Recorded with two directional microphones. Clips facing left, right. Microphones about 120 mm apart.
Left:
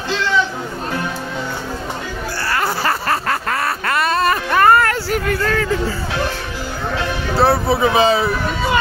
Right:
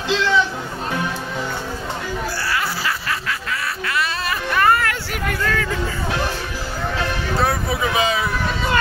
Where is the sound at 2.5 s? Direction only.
50° left (ahead or behind).